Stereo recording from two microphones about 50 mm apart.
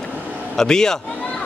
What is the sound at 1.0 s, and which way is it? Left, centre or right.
Speech, left.